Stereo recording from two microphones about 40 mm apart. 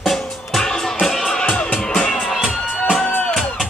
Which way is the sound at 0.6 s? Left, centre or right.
Centre.